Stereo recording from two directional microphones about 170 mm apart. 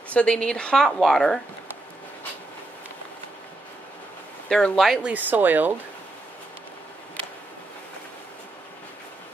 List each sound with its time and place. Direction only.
0.1 s a woman's voice: 5° left (ahead or behind)
4.5 s a woman's voice: 5° left (ahead or behind)
5.1 s speech: 10° right (ahead or behind)